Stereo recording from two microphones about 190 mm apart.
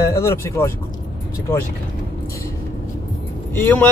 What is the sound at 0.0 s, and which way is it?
Speech, 15° left (ahead or behind).